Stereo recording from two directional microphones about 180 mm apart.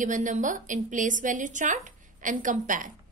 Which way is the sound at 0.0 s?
45° right (ahead or behind).